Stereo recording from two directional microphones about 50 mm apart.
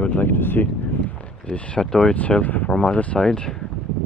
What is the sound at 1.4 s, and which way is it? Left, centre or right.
Speech, left.